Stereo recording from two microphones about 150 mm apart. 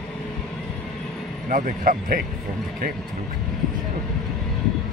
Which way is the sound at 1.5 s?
65° right (ahead or behind).